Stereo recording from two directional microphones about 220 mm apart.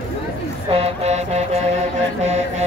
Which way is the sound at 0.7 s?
30° right (ahead or behind).